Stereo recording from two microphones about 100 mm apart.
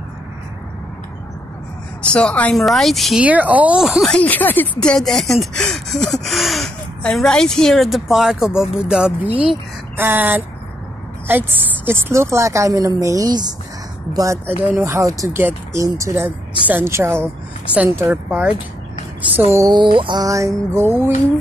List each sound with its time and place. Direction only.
2.1 s speech: 15° left (ahead or behind)
2.5 s speech: centre (ahead or behind)
3.2 s speech: 15° right (ahead or behind)
4.2 s speech: 20° left (ahead or behind)
4.9 s a woman's voice: 5° left (ahead or behind); by 13.6 s 45° right (ahead or behind)
14.1 s music: 30° right (ahead or behind)
14.4 s a woman's voice: 20° right (ahead or behind)
14.8 s music: 30° right (ahead or behind)
15.7 s a woman's voice: 30° right (ahead or behind)
19.7 s music: 55° right (ahead or behind)
20.2 s music: 30° right (ahead or behind)